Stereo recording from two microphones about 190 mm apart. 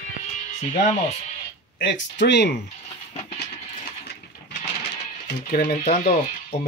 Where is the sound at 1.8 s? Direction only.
70° left (ahead or behind).